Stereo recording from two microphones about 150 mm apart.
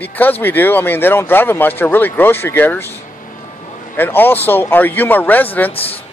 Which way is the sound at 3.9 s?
15° left (ahead or behind).